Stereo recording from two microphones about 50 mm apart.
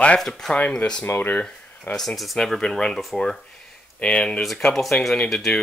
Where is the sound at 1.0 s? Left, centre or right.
Left.